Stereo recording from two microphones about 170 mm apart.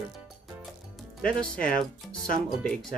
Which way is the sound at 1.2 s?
55° left (ahead or behind).